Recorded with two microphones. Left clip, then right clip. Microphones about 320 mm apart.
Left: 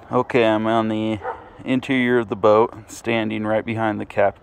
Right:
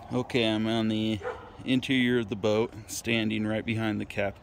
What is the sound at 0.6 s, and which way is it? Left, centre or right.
Speech, left.